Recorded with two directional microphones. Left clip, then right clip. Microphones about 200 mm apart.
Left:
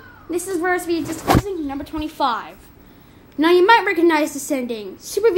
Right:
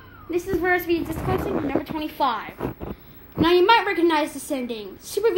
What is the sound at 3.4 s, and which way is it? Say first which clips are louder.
A woman's voice: left 4 dB; 35° left (ahead or behind).